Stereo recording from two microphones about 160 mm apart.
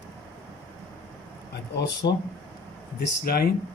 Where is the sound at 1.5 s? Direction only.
90° left.